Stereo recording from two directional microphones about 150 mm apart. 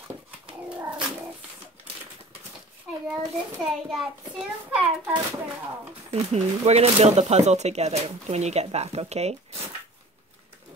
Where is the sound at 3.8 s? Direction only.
5° right (ahead or behind).